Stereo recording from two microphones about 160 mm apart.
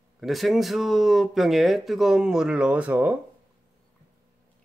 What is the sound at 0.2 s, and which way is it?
Speech, centre (ahead or behind).